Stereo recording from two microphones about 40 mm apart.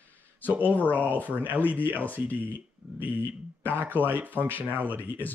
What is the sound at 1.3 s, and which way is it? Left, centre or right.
Speech, right.